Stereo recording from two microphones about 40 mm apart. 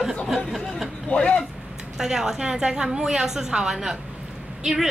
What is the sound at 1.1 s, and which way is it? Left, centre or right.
Speech, left.